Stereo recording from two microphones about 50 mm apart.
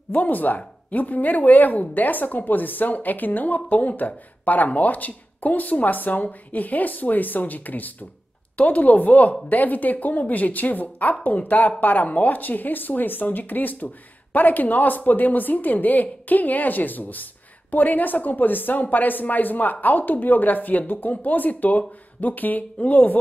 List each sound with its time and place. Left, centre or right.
0.1 s speech: left